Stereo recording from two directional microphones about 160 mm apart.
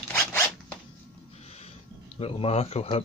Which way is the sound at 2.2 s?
35° left (ahead or behind).